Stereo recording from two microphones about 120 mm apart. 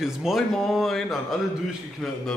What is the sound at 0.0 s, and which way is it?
Speech, 5° right (ahead or behind).